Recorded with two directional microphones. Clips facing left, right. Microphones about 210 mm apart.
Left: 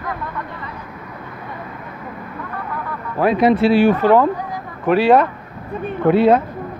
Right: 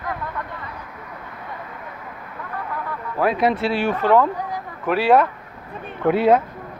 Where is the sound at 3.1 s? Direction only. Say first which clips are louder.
Left 5 dB; centre (ahead or behind).